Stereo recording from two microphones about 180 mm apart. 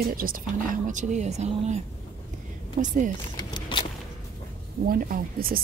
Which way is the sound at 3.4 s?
25° left (ahead or behind).